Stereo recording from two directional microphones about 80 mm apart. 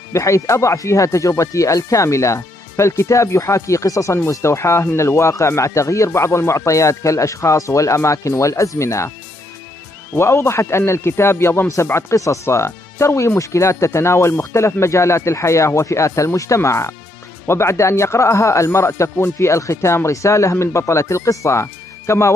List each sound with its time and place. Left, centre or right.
0.1 s speech: left
10.1 s speech: left